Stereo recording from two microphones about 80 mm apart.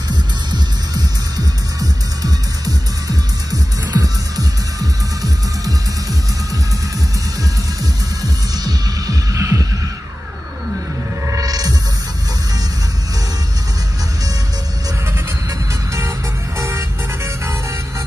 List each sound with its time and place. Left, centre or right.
0.5 s music: right
8.2 s music: right
11.2 s hum: right
16.5 s music: right